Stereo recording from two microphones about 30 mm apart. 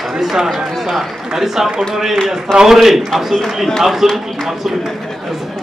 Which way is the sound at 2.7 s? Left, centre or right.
Centre.